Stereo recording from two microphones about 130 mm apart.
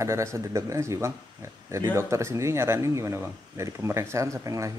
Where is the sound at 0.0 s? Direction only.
20° right (ahead or behind).